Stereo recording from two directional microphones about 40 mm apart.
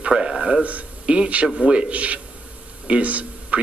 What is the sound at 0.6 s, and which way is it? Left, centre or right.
A man's voice, right.